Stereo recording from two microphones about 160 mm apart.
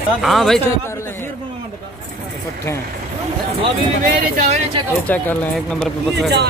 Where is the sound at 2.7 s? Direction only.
15° left (ahead or behind).